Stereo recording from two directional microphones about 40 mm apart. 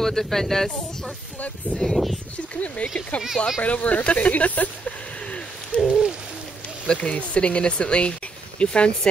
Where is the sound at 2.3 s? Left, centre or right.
Left.